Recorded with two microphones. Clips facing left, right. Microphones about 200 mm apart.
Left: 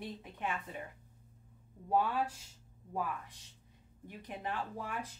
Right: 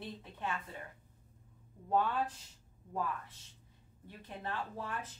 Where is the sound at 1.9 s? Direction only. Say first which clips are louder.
Left 1 dB; 10° left (ahead or behind).